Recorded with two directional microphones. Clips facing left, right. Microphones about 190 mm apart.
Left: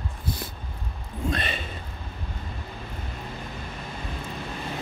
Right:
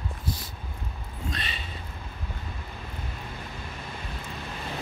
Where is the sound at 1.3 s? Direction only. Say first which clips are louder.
Left 7 dB; 55° left (ahead or behind).